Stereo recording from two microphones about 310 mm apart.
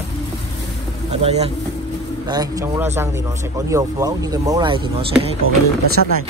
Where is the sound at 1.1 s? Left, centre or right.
Centre.